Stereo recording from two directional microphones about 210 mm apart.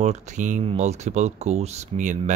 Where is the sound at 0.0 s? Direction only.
35° right (ahead or behind).